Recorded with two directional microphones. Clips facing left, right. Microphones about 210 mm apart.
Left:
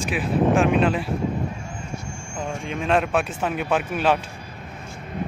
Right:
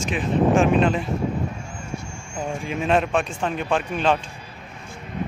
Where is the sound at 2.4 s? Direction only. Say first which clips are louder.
Right 2 dB; 5° right (ahead or behind).